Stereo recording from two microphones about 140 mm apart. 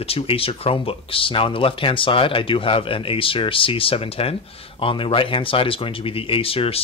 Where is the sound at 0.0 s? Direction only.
45° left (ahead or behind).